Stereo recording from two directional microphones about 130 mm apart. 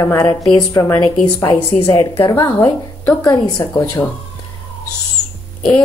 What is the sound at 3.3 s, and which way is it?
Speech, 35° left (ahead or behind).